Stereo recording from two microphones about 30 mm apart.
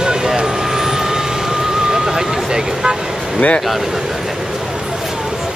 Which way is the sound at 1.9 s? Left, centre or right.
Centre.